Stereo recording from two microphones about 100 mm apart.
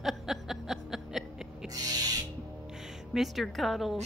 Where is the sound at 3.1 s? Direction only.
5° right (ahead or behind).